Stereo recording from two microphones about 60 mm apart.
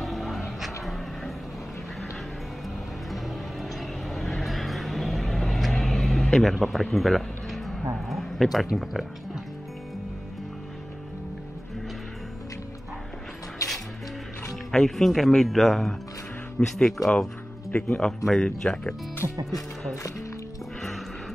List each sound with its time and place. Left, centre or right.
0.0 s music: centre
3.6 s vehicle: centre
8.1 s a sound: centre
8.7 s speech: centre
13.6 s music: left
14.5 s speech: centre
19.2 s speech: right